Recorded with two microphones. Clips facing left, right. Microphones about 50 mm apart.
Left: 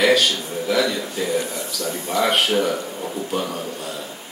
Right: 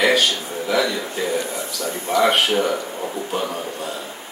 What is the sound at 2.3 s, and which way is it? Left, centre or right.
Speech, centre.